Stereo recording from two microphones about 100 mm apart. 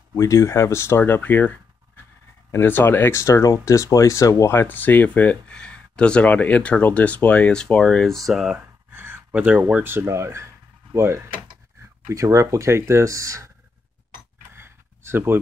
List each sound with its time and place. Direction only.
0.1 s speech: 30° left (ahead or behind)
2.5 s speech: 20° left (ahead or behind); by 8.6 s 5° right (ahead or behind)
8.9 s a sound: 20° right (ahead or behind)
9.6 s speech: 15° right (ahead or behind)
9.9 s speech: 30° right (ahead or behind)
14.5 s a sound: 25° right (ahead or behind)